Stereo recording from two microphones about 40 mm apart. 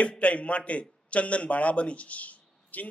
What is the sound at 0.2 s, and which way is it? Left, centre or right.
A man's voice, left.